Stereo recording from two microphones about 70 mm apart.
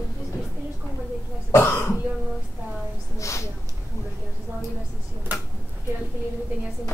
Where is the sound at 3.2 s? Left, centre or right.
Left.